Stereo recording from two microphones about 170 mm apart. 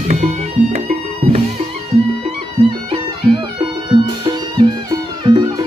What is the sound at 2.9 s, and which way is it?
Music, 30° right (ahead or behind).